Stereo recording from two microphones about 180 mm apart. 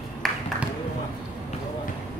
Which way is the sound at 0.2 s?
Centre (ahead or behind).